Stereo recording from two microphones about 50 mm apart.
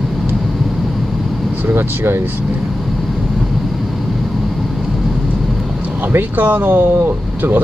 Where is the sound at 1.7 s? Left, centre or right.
Right.